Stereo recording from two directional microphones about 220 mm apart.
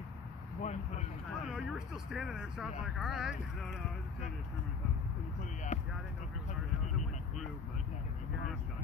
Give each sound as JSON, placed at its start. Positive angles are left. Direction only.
{"t": 0.6, "sound": "vehicle", "side_deg": 30}
{"t": 1.4, "sound": "speech", "side_deg": 0}
{"t": 5.7, "sound": "a sound", "side_deg": 30}